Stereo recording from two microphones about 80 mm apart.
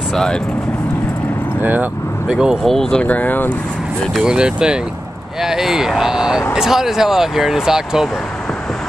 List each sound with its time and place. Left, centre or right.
0.1 s speech: centre
1.6 s speech: right
2.2 s speech: centre
2.7 s speech: centre
3.0 s speech: centre
4.1 s speech: centre